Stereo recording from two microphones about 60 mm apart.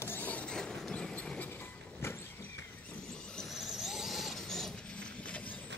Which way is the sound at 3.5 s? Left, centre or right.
Centre.